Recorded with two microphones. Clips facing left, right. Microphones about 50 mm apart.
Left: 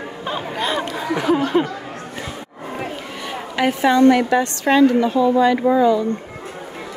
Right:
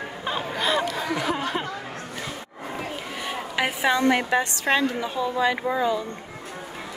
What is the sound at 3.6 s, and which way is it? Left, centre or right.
A woman's voice, centre.